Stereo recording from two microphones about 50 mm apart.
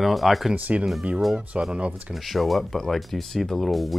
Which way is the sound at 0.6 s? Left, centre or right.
Right.